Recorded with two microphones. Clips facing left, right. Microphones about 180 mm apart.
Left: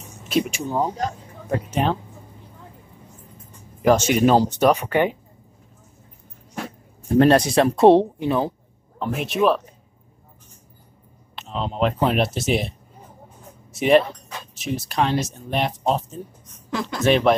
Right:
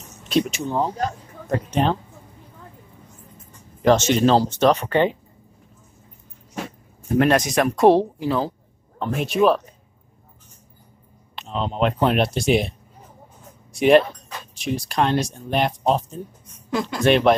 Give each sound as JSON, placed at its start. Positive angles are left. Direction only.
{"t": 0.2, "sound": "speech", "side_deg": 5}
{"t": 3.8, "sound": "speech", "side_deg": 10}
{"t": 7.2, "sound": "speech", "side_deg": 30}
{"t": 9.0, "sound": "speech", "side_deg": 0}
{"t": 11.3, "sound": "speech", "side_deg": 0}
{"t": 13.7, "sound": "speech", "side_deg": 0}